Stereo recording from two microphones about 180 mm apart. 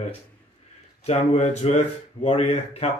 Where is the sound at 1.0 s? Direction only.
40° left (ahead or behind).